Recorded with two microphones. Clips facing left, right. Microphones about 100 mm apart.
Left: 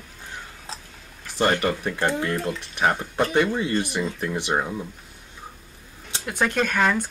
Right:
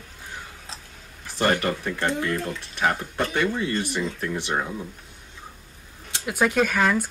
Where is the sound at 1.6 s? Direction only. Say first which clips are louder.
Left 2 dB; 15° left (ahead or behind).